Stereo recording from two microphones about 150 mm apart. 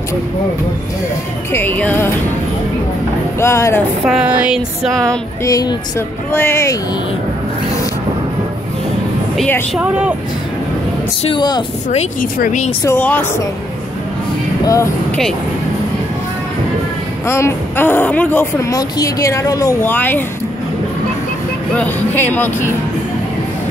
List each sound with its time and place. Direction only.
1.5 s a woman's voice: 15° left (ahead or behind)
3.3 s a woman's voice: 20° left (ahead or behind)
4.0 s music: 5° right (ahead or behind)
5.4 s speech: 25° left (ahead or behind)
9.8 s speech: 5° right (ahead or behind)
11.2 s speech: 30° left (ahead or behind)
12.2 s speech: 60° left (ahead or behind)
12.8 s a woman's voice: 10° left (ahead or behind)
14.7 s speech: 20° left (ahead or behind)
17.3 s a woman's voice: 15° left (ahead or behind)
21.7 s a woman's voice: 15° left (ahead or behind)